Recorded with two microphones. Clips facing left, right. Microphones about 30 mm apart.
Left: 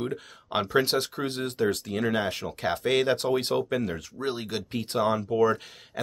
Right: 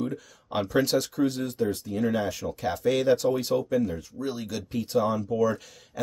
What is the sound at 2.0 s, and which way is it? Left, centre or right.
Speech, left.